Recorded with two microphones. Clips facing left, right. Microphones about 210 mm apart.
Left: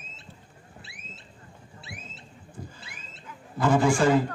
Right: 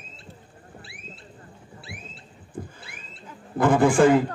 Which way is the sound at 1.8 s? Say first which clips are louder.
Right 2 dB; 20° left (ahead or behind).